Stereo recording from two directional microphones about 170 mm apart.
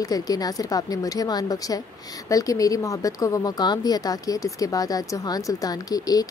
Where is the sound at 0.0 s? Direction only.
20° left (ahead or behind).